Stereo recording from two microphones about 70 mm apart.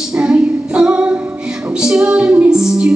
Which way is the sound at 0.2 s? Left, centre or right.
Centre.